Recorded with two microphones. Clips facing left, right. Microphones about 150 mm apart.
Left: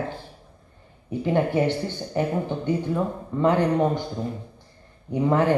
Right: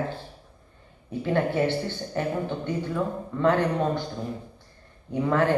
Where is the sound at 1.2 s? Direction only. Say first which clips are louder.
Left 2 dB; 15° left (ahead or behind).